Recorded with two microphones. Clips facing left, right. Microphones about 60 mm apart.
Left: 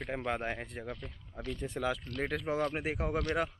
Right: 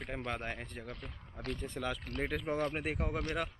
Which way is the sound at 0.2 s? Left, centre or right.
Centre.